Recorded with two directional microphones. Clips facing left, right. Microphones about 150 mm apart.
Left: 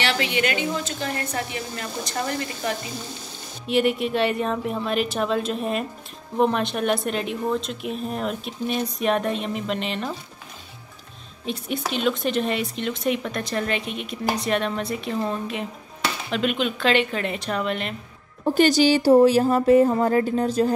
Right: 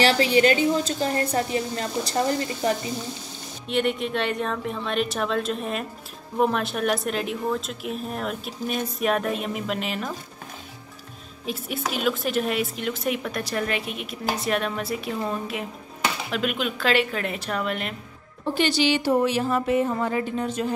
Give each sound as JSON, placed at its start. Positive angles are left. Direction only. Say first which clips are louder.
{"t": 0.0, "sound": "a woman's voice", "louder": "right 5 dB", "side_deg": -35}
{"t": 3.6, "sound": "speech", "louder": "left 3 dB", "side_deg": 5}
{"t": 11.4, "sound": "speech", "louder": "left 2 dB", "side_deg": -5}
{"t": 18.4, "sound": "speech", "louder": "left 5 dB", "side_deg": 45}